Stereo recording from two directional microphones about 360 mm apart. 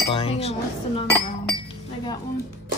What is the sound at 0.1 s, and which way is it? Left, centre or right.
Speech, centre.